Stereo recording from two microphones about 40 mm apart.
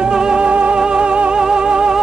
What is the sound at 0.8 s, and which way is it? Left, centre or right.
Music, right.